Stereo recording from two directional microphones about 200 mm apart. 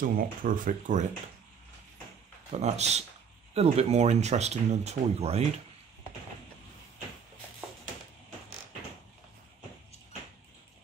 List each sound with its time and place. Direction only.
0.0 s speech: 45° right (ahead or behind)
2.6 s speech: 35° right (ahead or behind)